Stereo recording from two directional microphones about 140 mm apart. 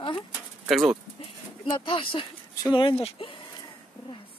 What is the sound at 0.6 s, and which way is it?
Speech, centre (ahead or behind).